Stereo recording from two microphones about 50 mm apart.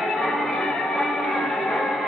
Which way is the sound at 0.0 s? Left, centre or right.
Centre.